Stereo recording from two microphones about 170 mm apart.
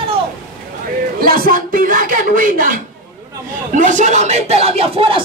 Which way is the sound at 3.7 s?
45° right (ahead or behind).